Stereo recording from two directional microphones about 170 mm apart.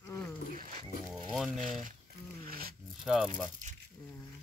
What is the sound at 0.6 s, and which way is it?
Dog, 55° right (ahead or behind).